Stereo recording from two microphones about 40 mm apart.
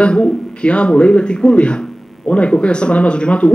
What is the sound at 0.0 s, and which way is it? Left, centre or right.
Speech, left.